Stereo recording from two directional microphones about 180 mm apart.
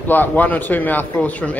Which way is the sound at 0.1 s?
10° left (ahead or behind).